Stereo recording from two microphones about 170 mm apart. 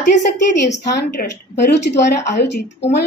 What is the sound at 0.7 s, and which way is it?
A woman's voice, 90° left.